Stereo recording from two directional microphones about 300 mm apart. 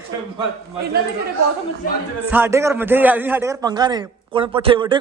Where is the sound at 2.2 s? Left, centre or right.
Centre.